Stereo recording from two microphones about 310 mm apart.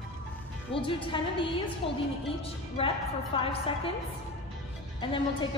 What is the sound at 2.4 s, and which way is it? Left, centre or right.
A woman's voice, centre.